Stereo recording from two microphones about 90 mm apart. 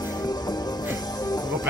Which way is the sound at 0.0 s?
45° left (ahead or behind).